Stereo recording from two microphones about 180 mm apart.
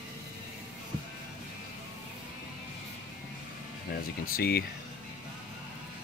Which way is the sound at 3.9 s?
55° left (ahead or behind).